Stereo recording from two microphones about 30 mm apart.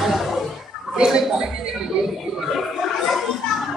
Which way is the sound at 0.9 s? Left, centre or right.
Right.